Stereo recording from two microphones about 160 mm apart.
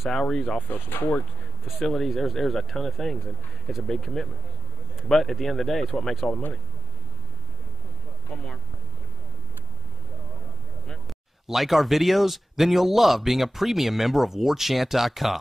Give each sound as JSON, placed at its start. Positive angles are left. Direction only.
{"t": 0.0, "sound": "speech", "side_deg": 0}
{"t": 1.8, "sound": "speech", "side_deg": 0}
{"t": 10.9, "sound": "speech", "side_deg": 0}